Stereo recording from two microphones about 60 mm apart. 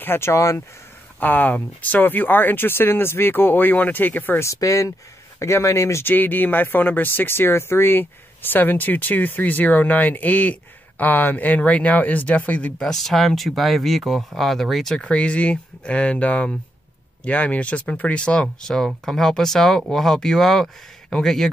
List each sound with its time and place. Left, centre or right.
0.0 s speech: left
1.2 s speech: left
4.4 s speech: left
5.4 s speech: left
6.0 s speech: left
12.7 s speech: centre
15.0 s speech: left